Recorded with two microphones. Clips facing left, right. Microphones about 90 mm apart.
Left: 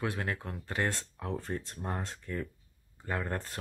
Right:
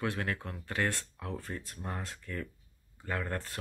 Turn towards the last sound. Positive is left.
turn(degrees=20)  # may be behind; listen again after turning